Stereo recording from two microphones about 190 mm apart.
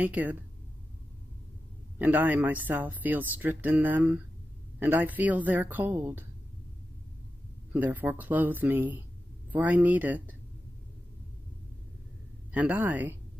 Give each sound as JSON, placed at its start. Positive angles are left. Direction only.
{"t": 0.0, "sound": "speech", "side_deg": -10}
{"t": 2.0, "sound": "speech", "side_deg": -10}
{"t": 7.7, "sound": "speech", "side_deg": -10}
{"t": 12.5, "sound": "speech", "side_deg": -10}